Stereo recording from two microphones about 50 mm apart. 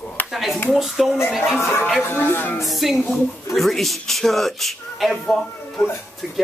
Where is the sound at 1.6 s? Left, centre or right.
Left.